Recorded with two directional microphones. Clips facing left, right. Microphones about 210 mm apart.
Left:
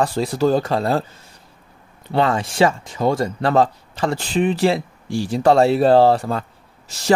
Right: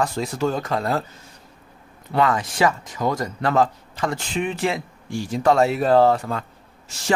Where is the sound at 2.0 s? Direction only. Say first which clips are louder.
Left 2 dB; 30° left (ahead or behind).